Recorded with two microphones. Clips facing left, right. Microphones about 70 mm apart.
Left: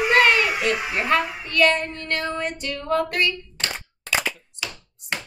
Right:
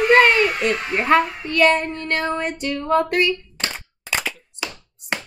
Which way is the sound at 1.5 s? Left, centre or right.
Right.